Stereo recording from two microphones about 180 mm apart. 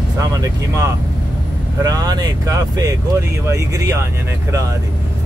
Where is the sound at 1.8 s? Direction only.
20° right (ahead or behind).